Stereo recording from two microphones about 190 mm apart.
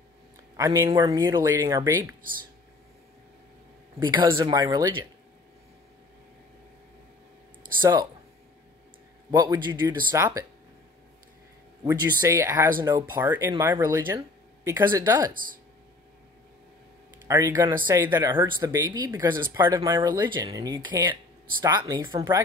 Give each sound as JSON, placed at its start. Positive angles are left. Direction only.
{"t": 0.6, "sound": "speech", "side_deg": -15}
{"t": 4.0, "sound": "speech", "side_deg": -25}
{"t": 7.8, "sound": "speech", "side_deg": -20}
{"t": 9.4, "sound": "speech", "side_deg": -20}
{"t": 11.8, "sound": "speech", "side_deg": -20}
{"t": 15.3, "sound": "speech", "side_deg": -50}
{"t": 17.3, "sound": "speech", "side_deg": -10}